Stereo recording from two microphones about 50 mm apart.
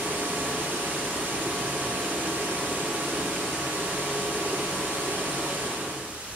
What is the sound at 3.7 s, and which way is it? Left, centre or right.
Vacuum cleaner, right.